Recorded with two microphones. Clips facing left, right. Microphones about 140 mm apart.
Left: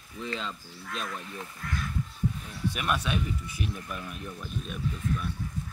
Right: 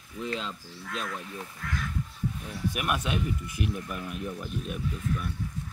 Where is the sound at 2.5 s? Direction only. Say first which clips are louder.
Right 2 dB; 10° right (ahead or behind).